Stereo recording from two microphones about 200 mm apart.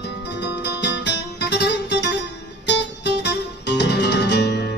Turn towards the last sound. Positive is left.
turn(degrees=55)  # may be behind; listen again after turning